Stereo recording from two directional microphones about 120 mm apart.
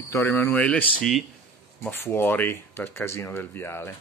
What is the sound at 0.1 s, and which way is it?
Speech, 25° left (ahead or behind).